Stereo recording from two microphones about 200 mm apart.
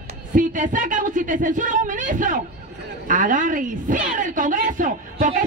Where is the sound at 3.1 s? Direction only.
40° right (ahead or behind).